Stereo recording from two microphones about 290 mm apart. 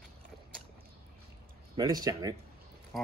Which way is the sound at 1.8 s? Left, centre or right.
Centre.